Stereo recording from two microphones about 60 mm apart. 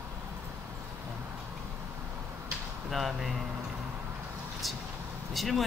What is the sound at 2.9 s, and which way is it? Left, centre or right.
Speech, centre.